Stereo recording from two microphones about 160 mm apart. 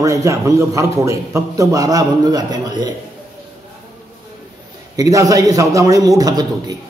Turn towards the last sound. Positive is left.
turn(degrees=-25)  # may be behind; listen again after turning